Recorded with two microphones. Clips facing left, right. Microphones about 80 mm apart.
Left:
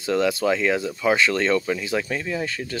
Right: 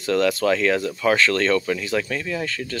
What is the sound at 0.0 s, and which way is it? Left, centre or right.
Speech, centre.